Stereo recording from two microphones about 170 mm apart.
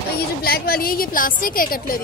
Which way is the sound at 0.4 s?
65° left (ahead or behind).